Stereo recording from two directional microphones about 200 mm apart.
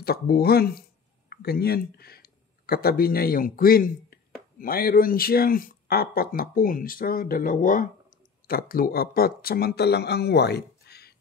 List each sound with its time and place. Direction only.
0.0 s speech: 50° left (ahead or behind)